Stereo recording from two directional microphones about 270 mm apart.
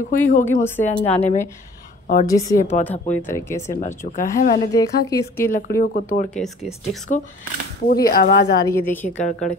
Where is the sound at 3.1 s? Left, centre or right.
Centre.